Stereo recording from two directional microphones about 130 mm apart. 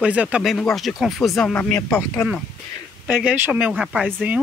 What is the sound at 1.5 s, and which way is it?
Speech, 15° left (ahead or behind).